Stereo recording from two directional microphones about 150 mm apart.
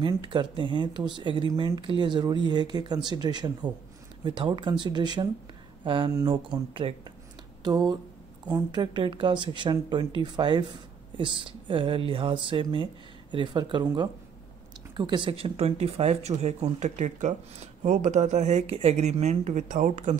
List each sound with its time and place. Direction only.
0.0 s speech: 30° right (ahead or behind); by 20.2 s 55° right (ahead or behind)